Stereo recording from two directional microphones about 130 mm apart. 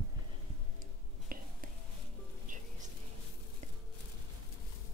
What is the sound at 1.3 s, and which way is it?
Whispering, 90° right.